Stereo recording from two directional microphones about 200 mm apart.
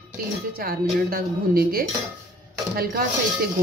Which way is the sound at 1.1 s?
50° right (ahead or behind).